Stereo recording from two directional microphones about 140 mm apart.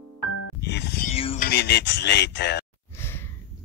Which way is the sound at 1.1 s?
45° left (ahead or behind).